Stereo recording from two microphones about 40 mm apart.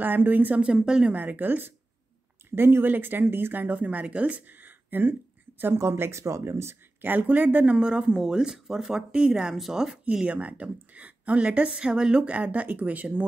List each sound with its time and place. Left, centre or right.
0.0 s speech: right
0.6 s speech: right
1.1 s speech: right
2.5 s speech: right
2.9 s speech: right
3.6 s speech: right
5.6 s speech: right
6.6 s a sound: right
7.1 s a woman's voice: right
7.6 s speech: right
10.2 s a woman's voice: right
12.2 s a woman's voice: right